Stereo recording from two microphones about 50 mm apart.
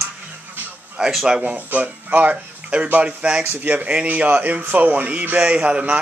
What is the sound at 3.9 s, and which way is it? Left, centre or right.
A man's voice, right.